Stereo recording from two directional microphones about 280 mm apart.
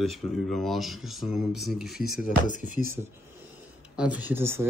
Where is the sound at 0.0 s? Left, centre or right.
Centre.